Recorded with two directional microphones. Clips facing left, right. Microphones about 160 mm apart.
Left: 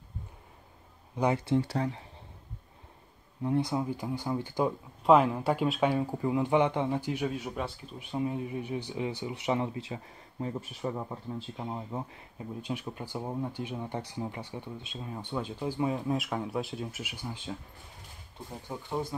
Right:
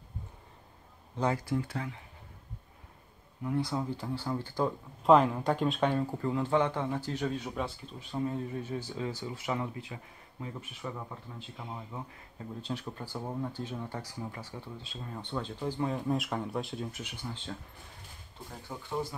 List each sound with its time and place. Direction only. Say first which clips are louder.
1.1 s speech: left 3 dB; 15° left (ahead or behind)
1.4 s speech: left 5 dB; 30° left (ahead or behind)
3.4 s speech: left 3 dB; 20° left (ahead or behind)
5.0 s speech: left 1 dB; 5° left (ahead or behind); by 9.7 s 20° left (ahead or behind)
10.4 s speech: left 6 dB; 35° left (ahead or behind)
12.6 s speech: left 1 dB; 10° left (ahead or behind)
18.7 s speech: left 3 dB; 15° left (ahead or behind)